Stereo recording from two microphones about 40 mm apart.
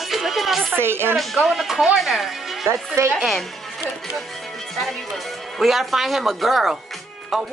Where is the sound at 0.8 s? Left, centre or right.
Right.